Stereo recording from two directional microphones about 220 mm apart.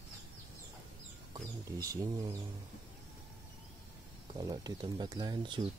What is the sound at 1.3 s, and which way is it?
Speech, 15° right (ahead or behind).